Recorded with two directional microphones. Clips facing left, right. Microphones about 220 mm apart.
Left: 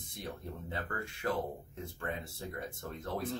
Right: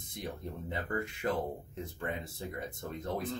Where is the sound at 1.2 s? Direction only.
20° right (ahead or behind).